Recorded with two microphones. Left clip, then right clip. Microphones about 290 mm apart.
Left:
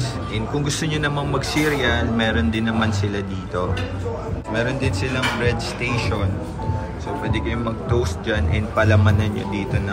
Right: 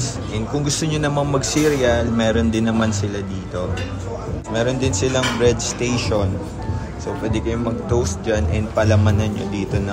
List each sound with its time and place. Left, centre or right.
0.6 s speech: centre
4.6 s speech: centre
7.2 s speech: centre